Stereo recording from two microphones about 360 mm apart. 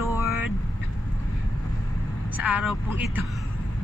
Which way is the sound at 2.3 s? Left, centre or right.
Centre.